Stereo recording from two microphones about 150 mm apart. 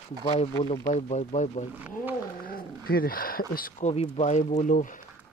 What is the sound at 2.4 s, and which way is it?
Speech, 80° left.